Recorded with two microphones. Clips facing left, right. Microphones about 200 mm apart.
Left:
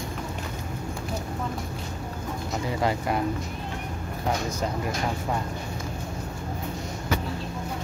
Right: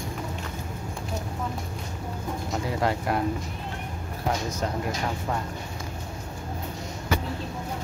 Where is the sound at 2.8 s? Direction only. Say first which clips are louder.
Even; centre (ahead or behind).